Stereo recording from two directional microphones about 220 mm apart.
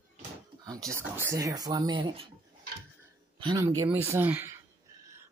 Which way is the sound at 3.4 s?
15° right (ahead or behind).